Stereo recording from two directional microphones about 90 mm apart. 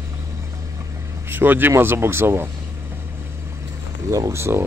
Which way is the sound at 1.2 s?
20° right (ahead or behind).